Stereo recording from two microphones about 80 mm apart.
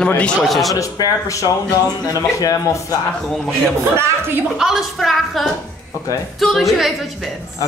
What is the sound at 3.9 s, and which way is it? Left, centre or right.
Speech, right.